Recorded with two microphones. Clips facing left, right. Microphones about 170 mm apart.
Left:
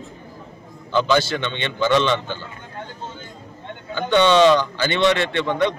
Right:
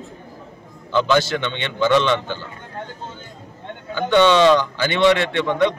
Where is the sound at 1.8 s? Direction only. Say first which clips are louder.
Right 2 dB; 15° left (ahead or behind).